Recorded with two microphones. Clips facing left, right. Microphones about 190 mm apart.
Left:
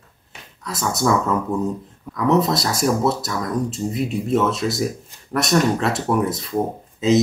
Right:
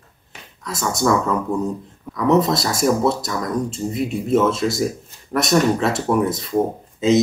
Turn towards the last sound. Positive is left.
turn(degrees=0)  # may be behind; listen again after turning